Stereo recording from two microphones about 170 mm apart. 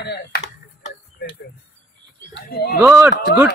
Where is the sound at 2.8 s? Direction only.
10° right (ahead or behind).